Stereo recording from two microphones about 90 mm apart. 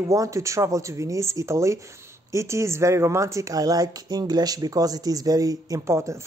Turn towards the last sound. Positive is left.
turn(degrees=-35)  # may be behind; listen again after turning